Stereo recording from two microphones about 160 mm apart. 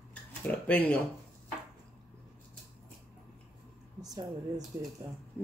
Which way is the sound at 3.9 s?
25° right (ahead or behind).